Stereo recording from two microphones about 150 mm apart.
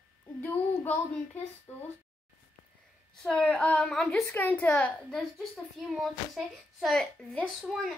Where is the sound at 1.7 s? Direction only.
10° left (ahead or behind).